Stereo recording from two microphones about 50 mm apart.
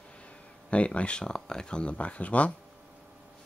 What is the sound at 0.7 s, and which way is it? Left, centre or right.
Speech, left.